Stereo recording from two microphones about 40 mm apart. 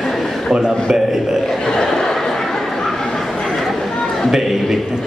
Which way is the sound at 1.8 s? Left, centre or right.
Centre.